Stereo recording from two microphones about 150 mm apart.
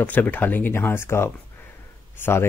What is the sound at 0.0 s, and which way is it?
Speech, 10° left (ahead or behind).